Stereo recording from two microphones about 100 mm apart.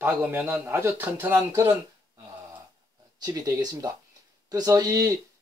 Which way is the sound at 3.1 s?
40° right (ahead or behind).